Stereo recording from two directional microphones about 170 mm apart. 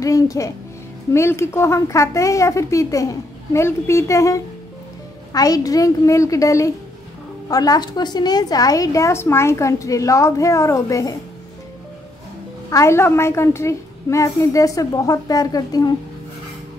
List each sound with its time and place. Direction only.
0.0 s a woman's voice: 20° left (ahead or behind)
12.6 s a woman's voice: 15° left (ahead or behind)